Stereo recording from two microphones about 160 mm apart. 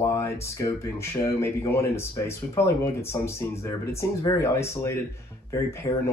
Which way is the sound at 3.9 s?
15° left (ahead or behind).